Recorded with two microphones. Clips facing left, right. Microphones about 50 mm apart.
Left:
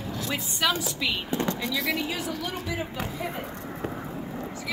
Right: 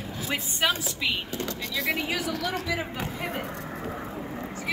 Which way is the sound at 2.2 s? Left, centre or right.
Right.